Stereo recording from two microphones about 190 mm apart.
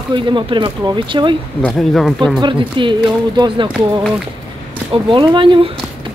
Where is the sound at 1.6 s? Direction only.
Centre (ahead or behind).